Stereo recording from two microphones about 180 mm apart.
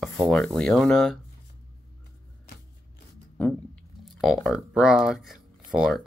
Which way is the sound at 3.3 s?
10° left (ahead or behind).